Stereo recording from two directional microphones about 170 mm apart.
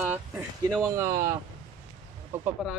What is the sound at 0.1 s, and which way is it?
Speech, 5° right (ahead or behind).